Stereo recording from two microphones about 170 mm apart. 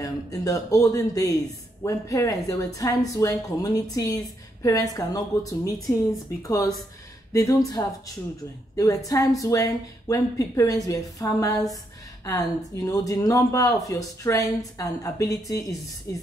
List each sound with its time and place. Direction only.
0.0 s speech: 20° left (ahead or behind)